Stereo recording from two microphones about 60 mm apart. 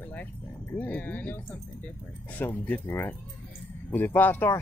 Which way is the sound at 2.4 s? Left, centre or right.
Left.